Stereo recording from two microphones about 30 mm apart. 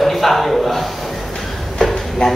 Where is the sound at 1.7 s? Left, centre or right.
Centre.